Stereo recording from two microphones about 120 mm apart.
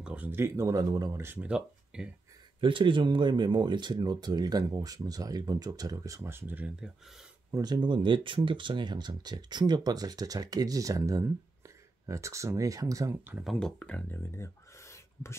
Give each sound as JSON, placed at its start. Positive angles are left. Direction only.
{"t": 0.0, "sound": "speech", "side_deg": -10}
{"t": 1.2, "sound": "speech", "side_deg": -15}
{"t": 2.6, "sound": "speech", "side_deg": -45}
{"t": 7.5, "sound": "speech", "side_deg": -35}
{"t": 13.4, "sound": "speech", "side_deg": 0}
{"t": 14.3, "sound": "a sound", "side_deg": 25}